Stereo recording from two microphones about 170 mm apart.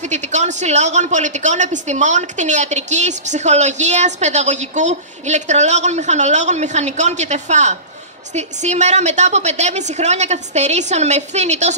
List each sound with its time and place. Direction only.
0.0 s a woman's voice: 45° right (ahead or behind)